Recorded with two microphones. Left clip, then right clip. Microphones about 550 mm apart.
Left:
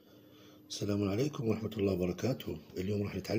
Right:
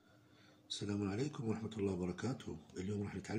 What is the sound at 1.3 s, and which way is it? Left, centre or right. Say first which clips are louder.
Speech: left 8 dB; right.